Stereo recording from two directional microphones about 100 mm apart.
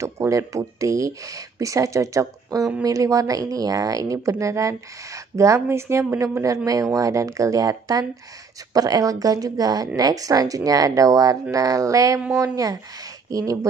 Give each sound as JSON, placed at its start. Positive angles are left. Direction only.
{"t": 0.0, "sound": "speech", "side_deg": -30}
{"t": 13.3, "sound": "speech", "side_deg": -35}